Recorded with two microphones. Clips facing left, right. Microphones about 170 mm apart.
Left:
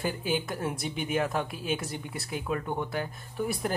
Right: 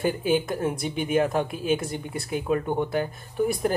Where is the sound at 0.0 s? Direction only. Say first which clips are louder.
Right 7 dB; 55° right (ahead or behind).